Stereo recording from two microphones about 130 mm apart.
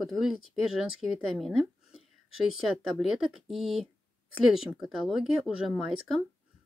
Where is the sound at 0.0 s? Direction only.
Centre (ahead or behind).